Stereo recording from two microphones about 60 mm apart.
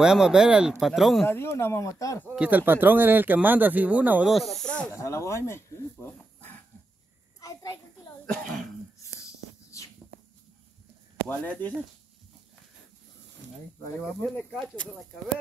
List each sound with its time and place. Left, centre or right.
0.0 s speech: centre
0.7 s speech: centre
1.2 s speech: left
1.8 s speech: left
2.5 s speech: right
4.3 s speech: centre
4.9 s speech: left
7.3 s a sound: left
9.7 s walk: left
11.2 s speech: left
13.9 s speech: left